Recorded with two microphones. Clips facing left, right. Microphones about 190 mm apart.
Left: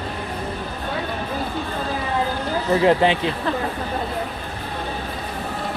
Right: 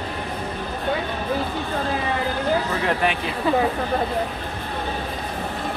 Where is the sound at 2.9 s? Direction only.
25° left (ahead or behind).